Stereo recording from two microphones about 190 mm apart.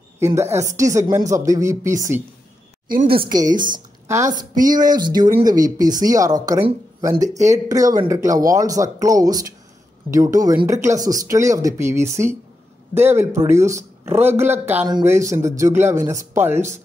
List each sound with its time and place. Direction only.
0.2 s speech: 15° right (ahead or behind)
3.1 s speech: 25° right (ahead or behind)
3.5 s speech: 45° right (ahead or behind)
4.4 s speech: 20° right (ahead or behind)